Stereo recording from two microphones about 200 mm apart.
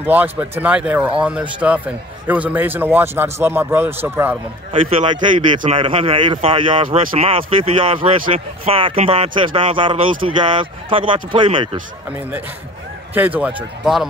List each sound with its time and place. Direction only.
0.0 s speech: 10° right (ahead or behind)
4.8 s speech: 25° right (ahead or behind)
13.1 s speech: 10° right (ahead or behind)